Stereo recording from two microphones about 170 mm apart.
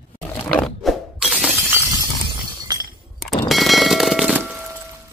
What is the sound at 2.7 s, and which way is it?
Glass, 25° right (ahead or behind).